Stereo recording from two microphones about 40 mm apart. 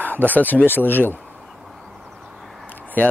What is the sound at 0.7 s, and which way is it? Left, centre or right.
Speech, left.